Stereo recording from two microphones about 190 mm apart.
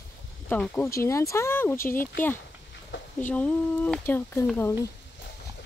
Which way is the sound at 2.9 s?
80° left.